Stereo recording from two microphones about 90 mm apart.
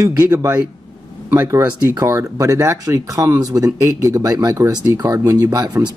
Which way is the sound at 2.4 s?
40° right (ahead or behind).